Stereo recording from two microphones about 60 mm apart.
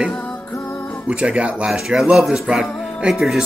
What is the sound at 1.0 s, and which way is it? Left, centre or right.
Music, centre.